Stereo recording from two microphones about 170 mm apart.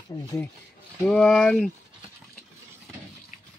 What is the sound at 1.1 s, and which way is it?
Speech, 5° left (ahead or behind).